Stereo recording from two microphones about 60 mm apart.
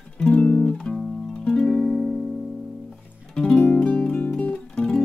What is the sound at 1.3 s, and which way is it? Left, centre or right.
Music, centre.